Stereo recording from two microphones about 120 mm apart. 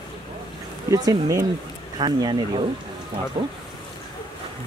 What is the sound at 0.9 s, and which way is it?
Speech, 30° right (ahead or behind).